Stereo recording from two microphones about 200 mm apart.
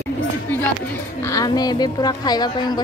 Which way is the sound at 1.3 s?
20° left (ahead or behind).